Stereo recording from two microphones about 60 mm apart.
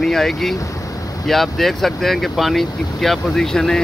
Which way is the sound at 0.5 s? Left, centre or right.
Left.